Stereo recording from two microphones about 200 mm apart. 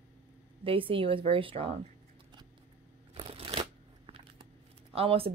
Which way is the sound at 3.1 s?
30° right (ahead or behind).